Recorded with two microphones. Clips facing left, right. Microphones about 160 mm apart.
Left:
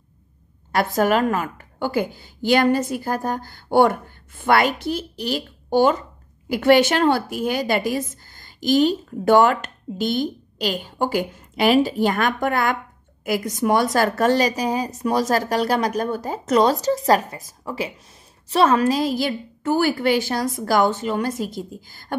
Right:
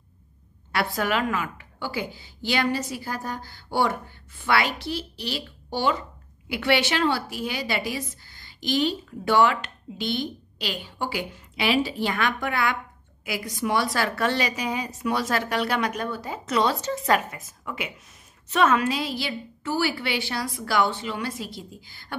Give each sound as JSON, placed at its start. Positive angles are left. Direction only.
{"t": 0.7, "sound": "a woman's voice", "side_deg": 45}